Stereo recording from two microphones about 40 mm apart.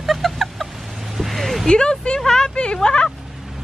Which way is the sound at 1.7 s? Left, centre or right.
Left.